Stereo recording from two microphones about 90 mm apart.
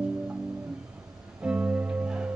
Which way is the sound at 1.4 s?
15° right (ahead or behind).